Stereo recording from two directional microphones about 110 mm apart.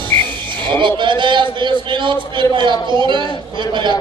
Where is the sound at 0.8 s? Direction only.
45° right (ahead or behind).